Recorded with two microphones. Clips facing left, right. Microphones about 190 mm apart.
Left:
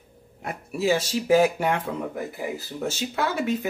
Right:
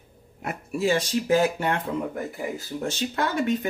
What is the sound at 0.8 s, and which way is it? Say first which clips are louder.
Speech: even; 5° left (ahead or behind).